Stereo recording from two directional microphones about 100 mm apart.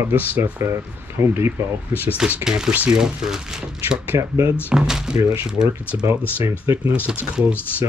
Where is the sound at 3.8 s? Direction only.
25° right (ahead or behind).